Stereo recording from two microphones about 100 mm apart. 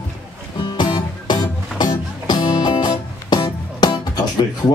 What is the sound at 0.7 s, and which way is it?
Music, 55° left (ahead or behind).